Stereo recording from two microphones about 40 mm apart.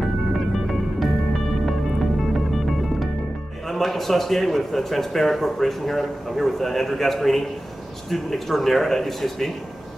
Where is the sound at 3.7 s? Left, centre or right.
Centre.